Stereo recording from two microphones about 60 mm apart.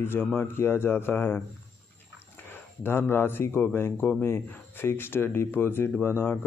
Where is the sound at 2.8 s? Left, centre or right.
Left.